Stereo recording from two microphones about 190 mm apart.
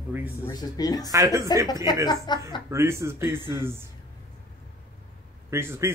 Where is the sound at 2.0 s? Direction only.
20° left (ahead or behind).